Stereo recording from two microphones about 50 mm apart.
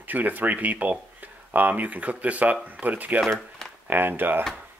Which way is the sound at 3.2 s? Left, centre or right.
Centre.